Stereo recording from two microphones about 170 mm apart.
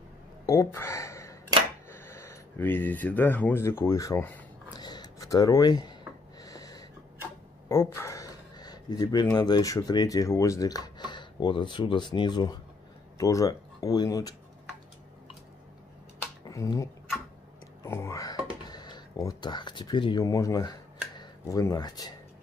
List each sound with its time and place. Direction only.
0.5 s speech: 15° left (ahead or behind)
4.7 s a sound: 25° left (ahead or behind)
6.4 s snort: 20° left (ahead or behind)
7.6 s speech: 15° left (ahead or behind)
16.4 s speech: 20° left (ahead or behind)